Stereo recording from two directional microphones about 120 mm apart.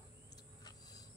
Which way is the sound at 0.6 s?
35° left (ahead or behind).